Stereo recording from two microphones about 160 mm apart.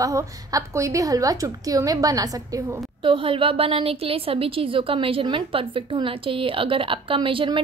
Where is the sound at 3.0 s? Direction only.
35° right (ahead or behind).